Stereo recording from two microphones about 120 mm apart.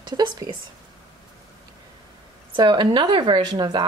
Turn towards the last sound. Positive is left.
turn(degrees=-35)  # may be behind; listen again after turning